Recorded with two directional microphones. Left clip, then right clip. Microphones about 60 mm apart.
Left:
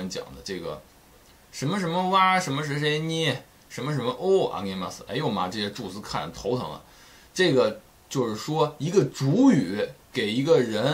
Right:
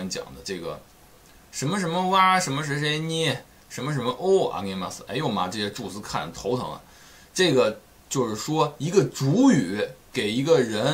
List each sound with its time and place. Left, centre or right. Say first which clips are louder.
0.0 s speech: right 1 dB; centre